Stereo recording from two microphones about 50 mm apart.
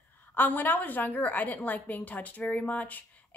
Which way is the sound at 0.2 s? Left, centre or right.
Left.